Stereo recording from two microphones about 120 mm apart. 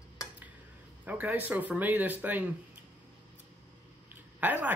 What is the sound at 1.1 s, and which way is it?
Speech, 15° right (ahead or behind).